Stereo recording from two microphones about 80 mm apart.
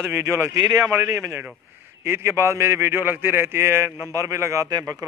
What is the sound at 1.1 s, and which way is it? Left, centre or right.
A man's voice, right.